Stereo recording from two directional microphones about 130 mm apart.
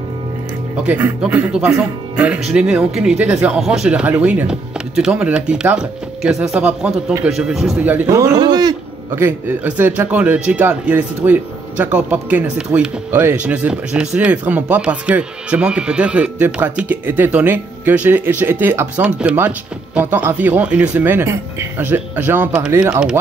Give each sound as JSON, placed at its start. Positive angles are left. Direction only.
{"t": 0.8, "sound": "speech", "side_deg": -10}
{"t": 8.1, "sound": "a man's voice", "side_deg": -25}
{"t": 9.1, "sound": "speech", "side_deg": -15}